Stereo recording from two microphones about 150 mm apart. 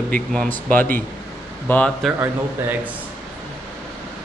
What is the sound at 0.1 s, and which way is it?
Speech, 5° left (ahead or behind).